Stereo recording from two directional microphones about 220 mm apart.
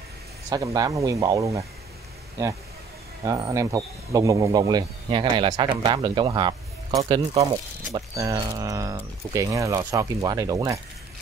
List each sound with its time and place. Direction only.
0.5 s speech: 15° right (ahead or behind)
3.3 s speech: 15° right (ahead or behind)